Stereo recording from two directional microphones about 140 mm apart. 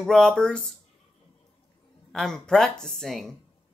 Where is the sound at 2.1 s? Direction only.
5° left (ahead or behind).